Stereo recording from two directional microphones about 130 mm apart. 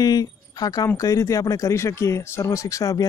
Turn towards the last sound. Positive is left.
turn(degrees=25)  # may be behind; listen again after turning